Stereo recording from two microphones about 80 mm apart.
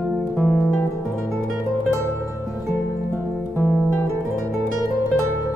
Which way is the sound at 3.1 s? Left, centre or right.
Left.